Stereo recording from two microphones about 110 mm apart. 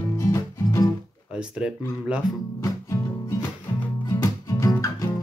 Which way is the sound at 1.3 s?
10° right (ahead or behind).